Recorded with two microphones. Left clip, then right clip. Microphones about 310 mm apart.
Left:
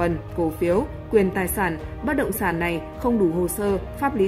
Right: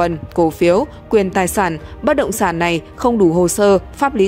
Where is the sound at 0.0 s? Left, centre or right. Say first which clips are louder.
Right 8 dB; right.